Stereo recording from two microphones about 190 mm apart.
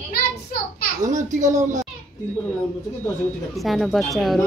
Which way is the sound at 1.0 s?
40° right (ahead or behind).